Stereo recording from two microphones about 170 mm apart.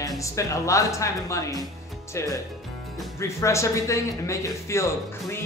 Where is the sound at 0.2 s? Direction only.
20° left (ahead or behind).